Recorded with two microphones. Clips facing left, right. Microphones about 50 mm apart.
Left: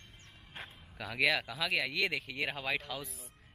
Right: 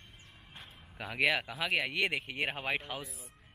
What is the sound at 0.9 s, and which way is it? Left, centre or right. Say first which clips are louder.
Speech: right 1 dB; centre.